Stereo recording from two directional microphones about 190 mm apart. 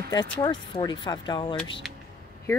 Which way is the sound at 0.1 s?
25° left (ahead or behind).